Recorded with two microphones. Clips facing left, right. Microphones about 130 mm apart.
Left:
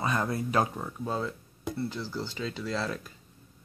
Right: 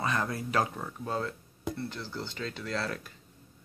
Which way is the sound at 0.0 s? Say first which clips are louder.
Left 2 dB; 20° left (ahead or behind).